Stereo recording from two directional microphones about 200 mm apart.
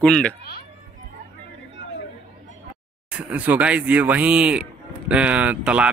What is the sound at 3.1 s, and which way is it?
Speech, 5° right (ahead or behind).